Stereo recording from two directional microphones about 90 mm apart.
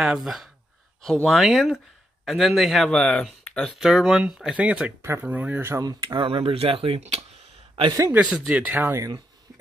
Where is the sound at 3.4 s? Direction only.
10° left (ahead or behind).